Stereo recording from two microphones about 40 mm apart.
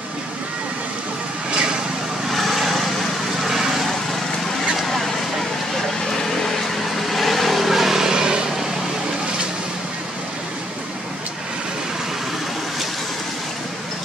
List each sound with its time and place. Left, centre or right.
1.5 s vehicle: right
2.3 s vehicle: centre
4.7 s vehicle: centre
7.0 s vehicle: centre